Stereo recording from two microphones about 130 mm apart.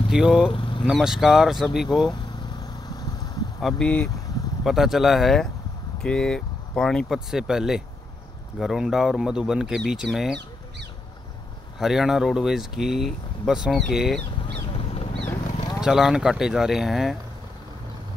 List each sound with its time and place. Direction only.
0.1 s speech: 5° right (ahead or behind)
0.5 s vehicle: 40° left (ahead or behind)
0.8 s speech: 5° right (ahead or behind)
2.0 s vehicle: 30° left (ahead or behind)
3.6 s speech: 5° left (ahead or behind)
4.6 s speech: centre (ahead or behind)
11.8 s speech: 5° right (ahead or behind)
14.4 s vehicle: 50° left (ahead or behind)
15.8 s speech: 5° right (ahead or behind)